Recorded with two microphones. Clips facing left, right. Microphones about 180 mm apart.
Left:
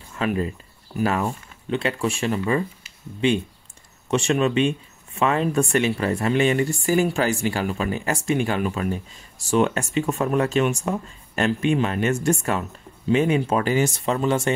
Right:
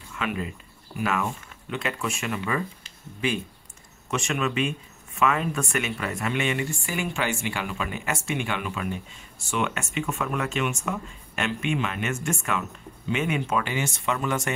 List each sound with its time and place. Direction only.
0.1 s speech: 35° left (ahead or behind)